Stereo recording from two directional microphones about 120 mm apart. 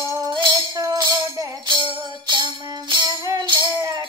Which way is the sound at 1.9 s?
40° right (ahead or behind).